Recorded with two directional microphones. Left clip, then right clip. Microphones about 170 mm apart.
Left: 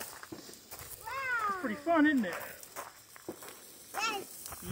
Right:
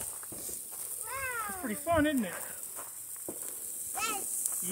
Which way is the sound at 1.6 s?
50° right (ahead or behind).